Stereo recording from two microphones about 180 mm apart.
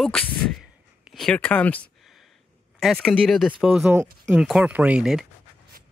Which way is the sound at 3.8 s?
10° right (ahead or behind).